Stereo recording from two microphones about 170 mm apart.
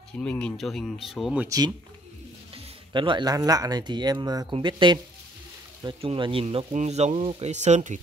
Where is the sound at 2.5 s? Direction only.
30° right (ahead or behind).